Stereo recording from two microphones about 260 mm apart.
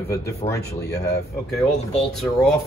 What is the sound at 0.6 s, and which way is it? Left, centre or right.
Speech, left.